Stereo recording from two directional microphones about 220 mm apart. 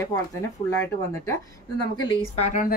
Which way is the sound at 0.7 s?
10° left (ahead or behind).